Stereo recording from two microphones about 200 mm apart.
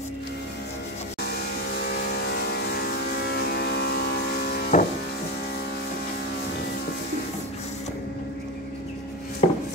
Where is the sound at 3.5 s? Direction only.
55° left (ahead or behind).